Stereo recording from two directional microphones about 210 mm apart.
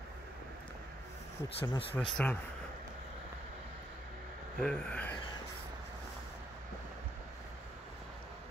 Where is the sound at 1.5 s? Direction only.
25° left (ahead or behind).